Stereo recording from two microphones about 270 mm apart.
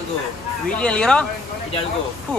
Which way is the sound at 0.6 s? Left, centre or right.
Centre.